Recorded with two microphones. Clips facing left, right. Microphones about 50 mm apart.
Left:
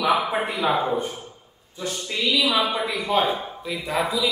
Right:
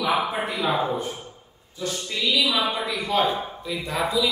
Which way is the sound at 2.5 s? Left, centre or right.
Left.